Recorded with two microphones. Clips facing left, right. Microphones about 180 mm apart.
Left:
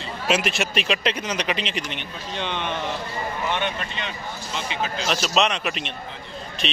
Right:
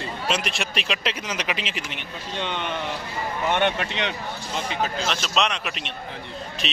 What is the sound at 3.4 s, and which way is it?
Speech, 60° right (ahead or behind).